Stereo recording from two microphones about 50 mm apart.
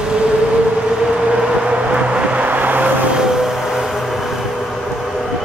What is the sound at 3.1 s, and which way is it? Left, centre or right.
Vehicle, centre.